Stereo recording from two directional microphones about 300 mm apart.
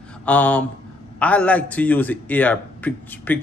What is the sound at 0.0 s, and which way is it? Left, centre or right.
A man's voice, centre.